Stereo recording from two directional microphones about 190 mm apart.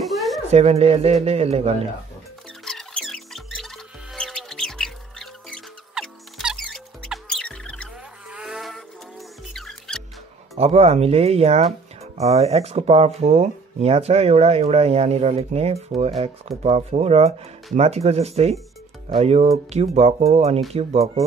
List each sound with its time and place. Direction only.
0.0 s a sound: centre (ahead or behind)
0.5 s speech: 35° right (ahead or behind)
2.6 s music: centre (ahead or behind)
8.3 s vehicle: 5° right (ahead or behind)
9.5 s mouse: 5° left (ahead or behind)
10.5 s speech: 35° right (ahead or behind)